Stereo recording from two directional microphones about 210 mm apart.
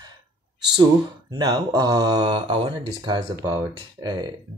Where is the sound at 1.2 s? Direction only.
15° right (ahead or behind).